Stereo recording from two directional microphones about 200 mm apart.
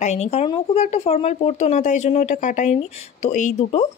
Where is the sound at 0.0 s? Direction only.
35° left (ahead or behind).